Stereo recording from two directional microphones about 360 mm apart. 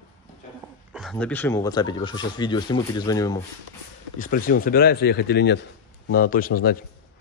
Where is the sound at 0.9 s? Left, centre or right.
Centre.